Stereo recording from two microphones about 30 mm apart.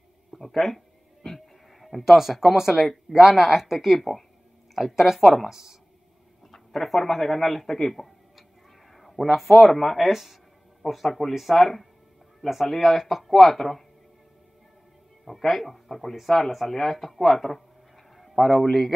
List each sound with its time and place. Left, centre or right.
0.4 s a sound: centre
2.1 s speech: centre
4.7 s speech: centre
6.5 s speech: centre
11.6 s speech: centre
15.2 s speech: centre